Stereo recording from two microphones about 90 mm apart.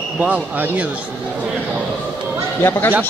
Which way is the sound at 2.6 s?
25° left (ahead or behind).